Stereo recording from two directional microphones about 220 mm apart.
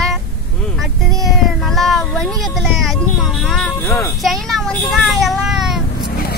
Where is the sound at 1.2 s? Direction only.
Centre (ahead or behind).